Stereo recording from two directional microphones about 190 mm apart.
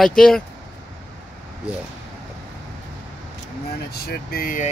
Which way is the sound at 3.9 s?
55° left (ahead or behind).